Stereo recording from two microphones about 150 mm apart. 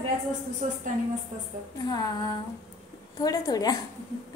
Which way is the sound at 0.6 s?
60° right (ahead or behind).